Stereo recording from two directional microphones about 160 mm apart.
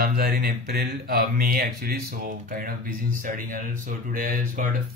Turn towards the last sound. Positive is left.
turn(degrees=-60)  # may be behind; listen again after turning